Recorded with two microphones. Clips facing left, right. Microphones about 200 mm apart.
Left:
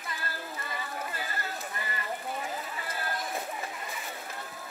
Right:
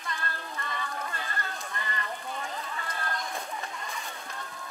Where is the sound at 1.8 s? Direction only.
10° left (ahead or behind).